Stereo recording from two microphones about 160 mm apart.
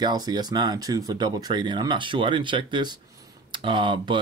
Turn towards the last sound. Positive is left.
turn(degrees=-30)  # may be behind; listen again after turning